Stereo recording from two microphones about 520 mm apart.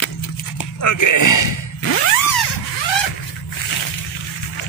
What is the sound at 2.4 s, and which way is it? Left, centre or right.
Vehicle, left.